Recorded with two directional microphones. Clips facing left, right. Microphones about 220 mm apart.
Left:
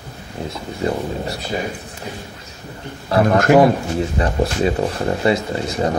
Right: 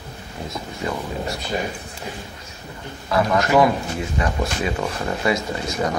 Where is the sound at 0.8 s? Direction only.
35° left (ahead or behind).